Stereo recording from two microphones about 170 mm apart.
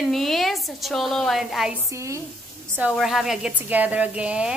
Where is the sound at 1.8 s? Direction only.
15° right (ahead or behind).